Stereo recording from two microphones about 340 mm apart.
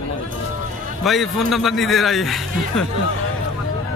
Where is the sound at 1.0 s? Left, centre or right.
Centre.